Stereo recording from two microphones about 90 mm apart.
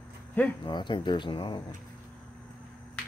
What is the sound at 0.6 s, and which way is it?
Speech, 55° left (ahead or behind).